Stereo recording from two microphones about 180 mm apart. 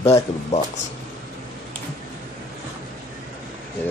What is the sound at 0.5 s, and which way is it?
Speech, 35° left (ahead or behind).